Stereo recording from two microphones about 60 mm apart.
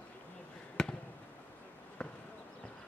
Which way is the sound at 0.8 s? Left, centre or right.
Centre.